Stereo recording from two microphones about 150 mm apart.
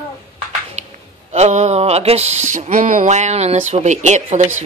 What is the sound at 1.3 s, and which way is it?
Speech, 50° right (ahead or behind).